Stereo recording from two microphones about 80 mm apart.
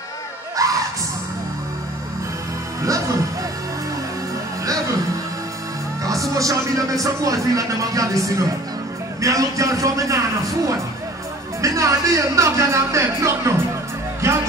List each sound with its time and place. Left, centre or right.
0.6 s music: right
6.3 s speech: right
14.2 s music: right